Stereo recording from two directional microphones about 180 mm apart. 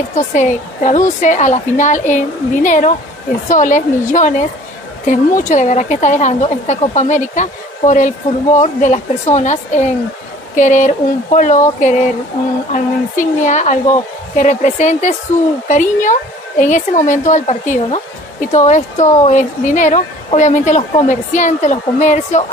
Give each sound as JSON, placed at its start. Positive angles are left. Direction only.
{"t": 0.1, "sound": "a woman's voice", "side_deg": 45}